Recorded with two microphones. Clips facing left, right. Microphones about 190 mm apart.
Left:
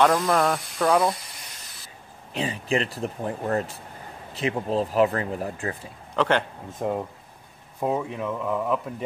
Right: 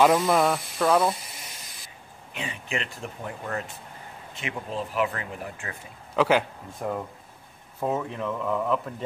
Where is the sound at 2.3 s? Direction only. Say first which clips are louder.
Left 7 dB; 35° left (ahead or behind).